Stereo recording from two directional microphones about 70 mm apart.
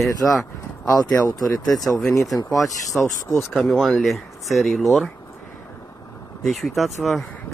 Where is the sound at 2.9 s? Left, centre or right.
Centre.